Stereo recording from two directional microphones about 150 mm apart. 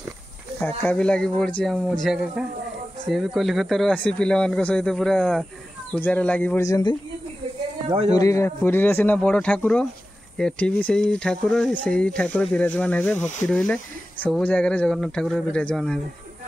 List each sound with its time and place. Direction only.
0.6 s speech: 10° left (ahead or behind)
6.6 s speech: 25° left (ahead or behind)
8.1 s speech: 20° left (ahead or behind); by 16.0 s 5° left (ahead or behind)